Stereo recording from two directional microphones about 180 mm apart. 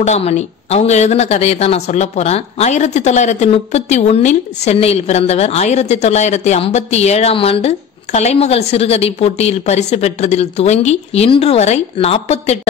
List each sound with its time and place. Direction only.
0.0 s speech: 35° left (ahead or behind)